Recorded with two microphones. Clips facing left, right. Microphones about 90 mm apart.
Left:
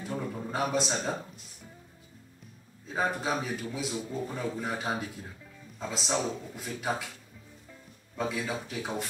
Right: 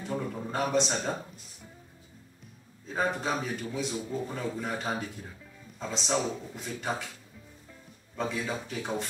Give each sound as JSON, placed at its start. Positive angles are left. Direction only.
{"t": 0.0, "sound": "a man's voice", "side_deg": 0}
{"t": 2.9, "sound": "a man's voice", "side_deg": 5}
{"t": 3.9, "sound": "a man's voice", "side_deg": 15}
{"t": 4.3, "sound": "a man's voice", "side_deg": 0}
{"t": 8.2, "sound": "a man's voice", "side_deg": 5}